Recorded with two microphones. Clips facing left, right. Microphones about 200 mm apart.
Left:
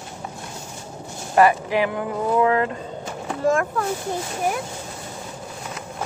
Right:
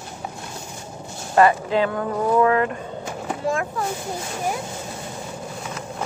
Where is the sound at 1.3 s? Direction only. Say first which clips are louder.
Even; 20° left (ahead or behind).